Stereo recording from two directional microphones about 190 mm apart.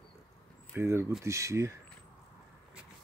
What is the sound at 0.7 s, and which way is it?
Speech, 15° right (ahead or behind).